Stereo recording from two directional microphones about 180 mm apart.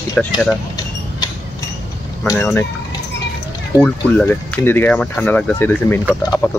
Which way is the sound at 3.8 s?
10° left (ahead or behind).